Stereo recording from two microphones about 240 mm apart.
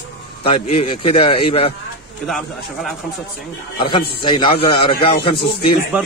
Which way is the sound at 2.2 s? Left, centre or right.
Centre.